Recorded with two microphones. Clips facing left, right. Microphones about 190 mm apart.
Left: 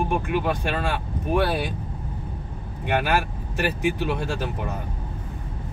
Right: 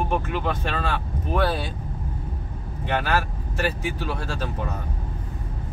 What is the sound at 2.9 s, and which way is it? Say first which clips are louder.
Speech: left 1 dB; 15° left (ahead or behind).